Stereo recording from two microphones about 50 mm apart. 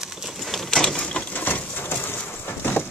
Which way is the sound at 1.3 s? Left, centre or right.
Left.